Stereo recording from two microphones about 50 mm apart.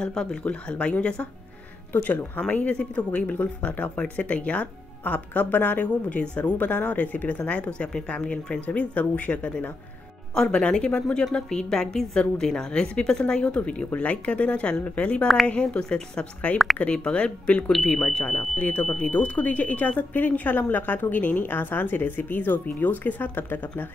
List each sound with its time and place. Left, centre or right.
0.0 s a woman's voice: centre
11.3 s a woman's voice: centre
17.6 s a woman's voice: centre
18.6 s speech: left